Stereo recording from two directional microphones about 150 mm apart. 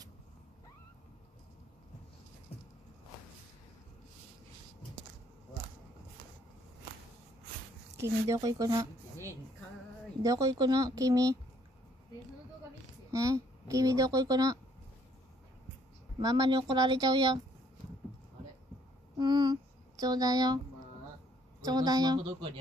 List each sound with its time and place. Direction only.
8.0 s speech: 20° right (ahead or behind)
13.1 s speech: 20° right (ahead or behind)
16.2 s speech: 25° right (ahead or behind)
19.1 s a sound: 25° right (ahead or behind)
21.5 s speech: 25° right (ahead or behind)